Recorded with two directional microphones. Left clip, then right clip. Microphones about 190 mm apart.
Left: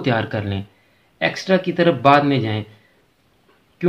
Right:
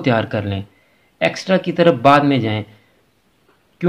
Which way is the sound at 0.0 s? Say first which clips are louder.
Right 3 dB; 25° right (ahead or behind).